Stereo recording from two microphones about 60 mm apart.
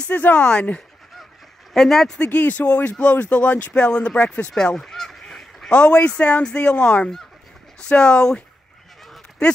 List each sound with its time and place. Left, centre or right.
0.0 s speech: left
0.5 s speech: centre
1.7 s speech: centre
2.1 s speech: left
7.9 s speech: centre